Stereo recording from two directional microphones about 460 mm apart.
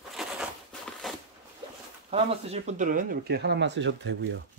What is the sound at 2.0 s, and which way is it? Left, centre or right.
Speech, centre.